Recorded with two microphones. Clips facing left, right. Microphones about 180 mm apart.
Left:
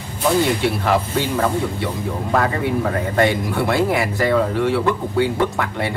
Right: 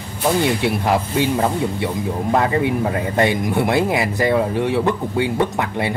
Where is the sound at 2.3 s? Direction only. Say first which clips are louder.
Right 1 dB; 20° right (ahead or behind).